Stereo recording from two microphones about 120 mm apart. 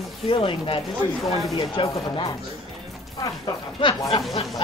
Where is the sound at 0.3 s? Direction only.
45° left (ahead or behind).